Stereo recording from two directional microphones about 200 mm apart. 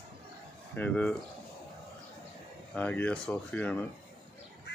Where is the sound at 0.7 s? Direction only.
5° left (ahead or behind).